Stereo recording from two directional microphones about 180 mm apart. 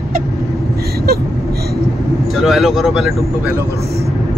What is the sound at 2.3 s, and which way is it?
Speech, centre (ahead or behind).